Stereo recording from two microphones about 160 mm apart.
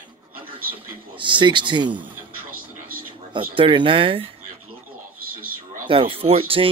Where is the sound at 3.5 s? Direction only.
30° right (ahead or behind).